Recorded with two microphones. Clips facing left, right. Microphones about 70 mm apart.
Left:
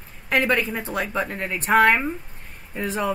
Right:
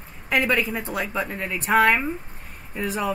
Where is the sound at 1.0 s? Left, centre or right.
Centre.